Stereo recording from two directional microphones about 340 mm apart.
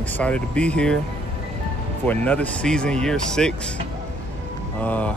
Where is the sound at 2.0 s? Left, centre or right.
Centre.